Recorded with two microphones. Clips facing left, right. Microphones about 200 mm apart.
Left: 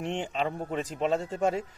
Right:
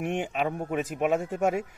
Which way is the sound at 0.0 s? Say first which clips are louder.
Right 2 dB; 10° right (ahead or behind).